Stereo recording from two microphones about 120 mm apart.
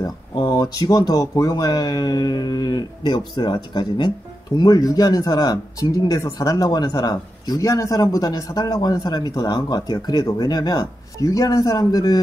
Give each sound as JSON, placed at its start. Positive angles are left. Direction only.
{"t": 0.0, "sound": "speech", "side_deg": 35}